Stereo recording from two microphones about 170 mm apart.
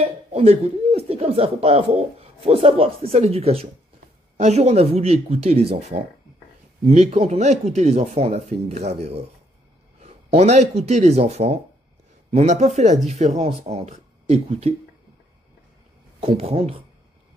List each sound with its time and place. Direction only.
0.0 s speech: 35° right (ahead or behind)
6.9 s speech: 40° right (ahead or behind)
16.2 s speech: 35° right (ahead or behind)